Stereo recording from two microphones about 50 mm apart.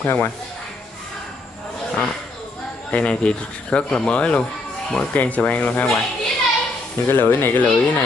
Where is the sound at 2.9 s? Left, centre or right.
Left.